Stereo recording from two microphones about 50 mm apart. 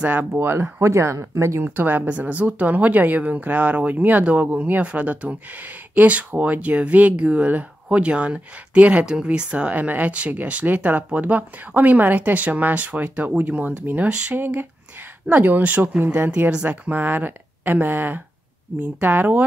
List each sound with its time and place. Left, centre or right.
0.0 s speech: right
0.3 s speech: right
0.8 s speech: right
1.6 s speech: right
2.0 s speech: right